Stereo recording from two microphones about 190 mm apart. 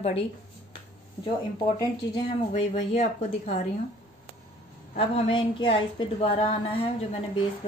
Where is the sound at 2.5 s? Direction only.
35° left (ahead or behind).